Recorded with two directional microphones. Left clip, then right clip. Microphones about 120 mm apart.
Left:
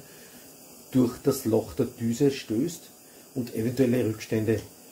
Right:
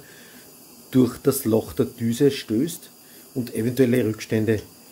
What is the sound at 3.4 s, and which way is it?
Speech, 75° right (ahead or behind).